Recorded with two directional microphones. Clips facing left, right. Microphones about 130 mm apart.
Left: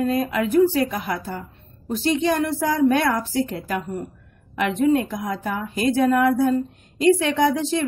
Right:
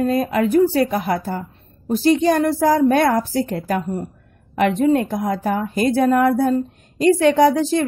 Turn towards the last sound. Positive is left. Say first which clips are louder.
# right 5 dB
turn(degrees=-40)  # may be behind; listen again after turning